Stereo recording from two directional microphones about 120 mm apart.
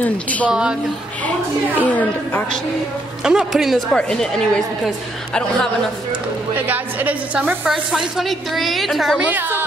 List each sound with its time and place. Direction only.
0.0 s a woman's voice: 10° left (ahead or behind)
0.5 s a woman's voice: 5° right (ahead or behind)
1.8 s a woman's voice: 15° left (ahead or behind)
3.3 s a woman's voice: 5° right (ahead or behind)
6.5 s a woman's voice: 15° right (ahead or behind)
9.3 s speech: 15° right (ahead or behind)